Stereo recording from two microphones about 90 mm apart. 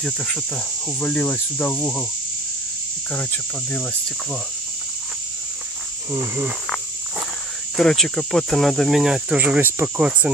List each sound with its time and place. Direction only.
0.0 s insect: 10° left (ahead or behind)
1.0 s cricket: 20° left (ahead or behind)
6.1 s speech: 25° right (ahead or behind)
7.7 s speech: 5° left (ahead or behind)
9.4 s speech: 20° right (ahead or behind)